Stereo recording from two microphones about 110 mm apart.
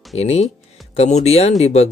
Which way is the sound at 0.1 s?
75° left (ahead or behind).